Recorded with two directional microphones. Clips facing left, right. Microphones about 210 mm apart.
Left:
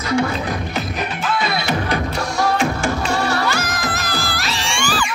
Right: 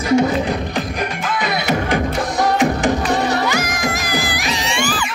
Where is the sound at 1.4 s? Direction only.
15° right (ahead or behind).